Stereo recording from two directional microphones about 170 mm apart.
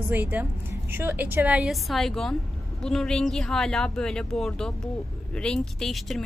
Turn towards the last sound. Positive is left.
turn(degrees=0)  # may be behind; listen again after turning